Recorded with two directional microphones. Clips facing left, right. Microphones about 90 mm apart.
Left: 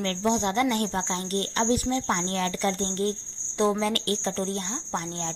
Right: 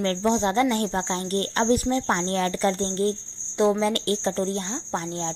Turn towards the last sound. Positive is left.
turn(degrees=-25)  # may be behind; listen again after turning